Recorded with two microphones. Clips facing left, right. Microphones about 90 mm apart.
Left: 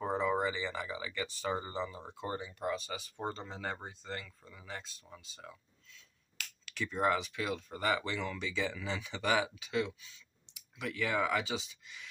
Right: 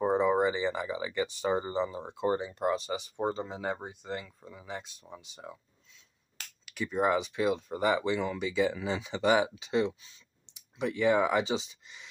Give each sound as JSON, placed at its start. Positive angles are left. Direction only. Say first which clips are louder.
{"t": 0.0, "sound": "speech", "louder": "right 6 dB", "side_deg": -20}
{"t": 6.6, "sound": "speech", "louder": "right 4 dB", "side_deg": -10}